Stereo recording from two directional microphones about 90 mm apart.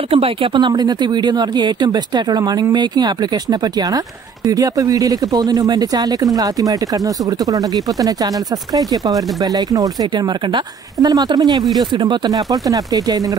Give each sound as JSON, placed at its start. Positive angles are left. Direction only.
{"t": 0.1, "sound": "speech", "side_deg": -90}
{"t": 11.0, "sound": "speech", "side_deg": -45}